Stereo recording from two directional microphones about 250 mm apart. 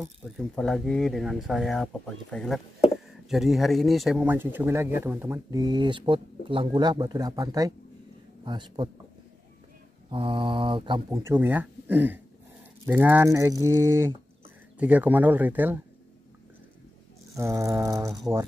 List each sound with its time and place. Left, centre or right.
0.0 s speech: centre
10.0 s speech: right
17.4 s speech: centre